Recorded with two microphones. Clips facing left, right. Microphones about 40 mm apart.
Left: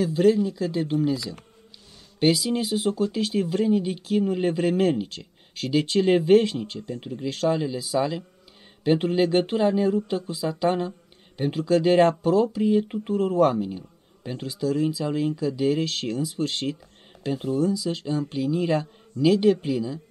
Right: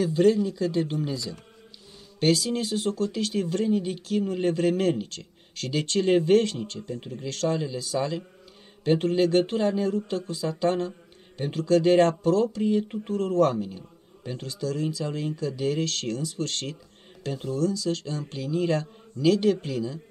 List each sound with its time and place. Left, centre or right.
0.0 s speech: centre
2.1 s speech: centre
13.7 s a sound: left
14.4 s speech: centre